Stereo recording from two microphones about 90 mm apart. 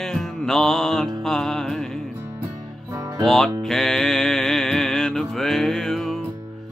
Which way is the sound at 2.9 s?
45° right (ahead or behind).